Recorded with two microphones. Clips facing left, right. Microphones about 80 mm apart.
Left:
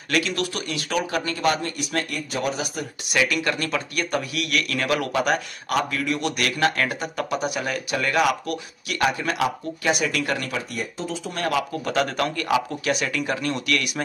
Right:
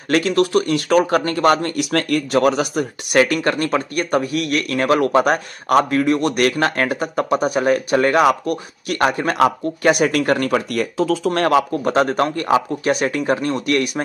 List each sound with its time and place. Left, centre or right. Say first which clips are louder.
0.1 s speech: right 9 dB; right
10.7 s speech: right 11 dB; right
11.9 s speech: right 6 dB; right